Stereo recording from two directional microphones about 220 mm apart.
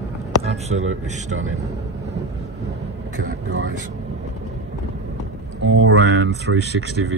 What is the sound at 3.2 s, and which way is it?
Speech, 55° right (ahead or behind).